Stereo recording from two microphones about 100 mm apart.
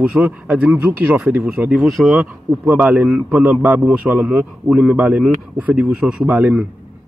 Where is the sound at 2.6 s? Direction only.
15° right (ahead or behind).